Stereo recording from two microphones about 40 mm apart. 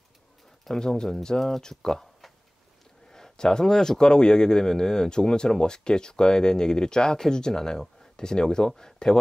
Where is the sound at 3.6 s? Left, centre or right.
Centre.